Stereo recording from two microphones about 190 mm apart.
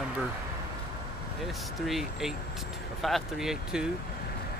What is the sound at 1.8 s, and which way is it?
Speech, centre (ahead or behind).